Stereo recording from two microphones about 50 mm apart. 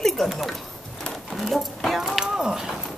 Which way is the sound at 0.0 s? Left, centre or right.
Centre.